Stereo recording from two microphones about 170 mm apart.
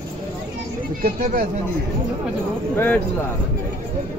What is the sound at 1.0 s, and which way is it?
Speech, 55° right (ahead or behind).